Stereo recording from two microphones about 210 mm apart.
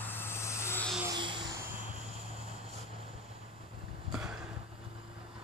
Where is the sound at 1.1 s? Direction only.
20° right (ahead or behind).